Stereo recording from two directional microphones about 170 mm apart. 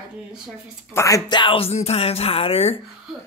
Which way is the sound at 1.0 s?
20° left (ahead or behind).